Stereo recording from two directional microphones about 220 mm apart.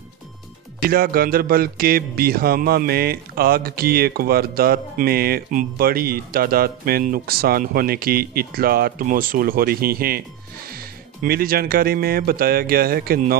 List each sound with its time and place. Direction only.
0.8 s speech: 40° right (ahead or behind)
11.2 s speech: 40° right (ahead or behind)